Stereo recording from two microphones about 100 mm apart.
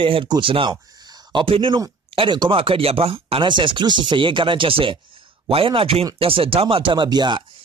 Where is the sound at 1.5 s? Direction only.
60° right (ahead or behind).